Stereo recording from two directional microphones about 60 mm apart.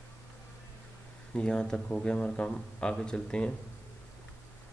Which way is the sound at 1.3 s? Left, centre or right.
Centre.